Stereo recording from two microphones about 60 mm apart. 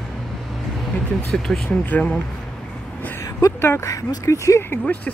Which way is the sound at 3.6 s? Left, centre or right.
Left.